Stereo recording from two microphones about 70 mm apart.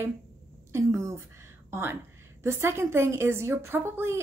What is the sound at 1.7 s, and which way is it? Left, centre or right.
Speech, right.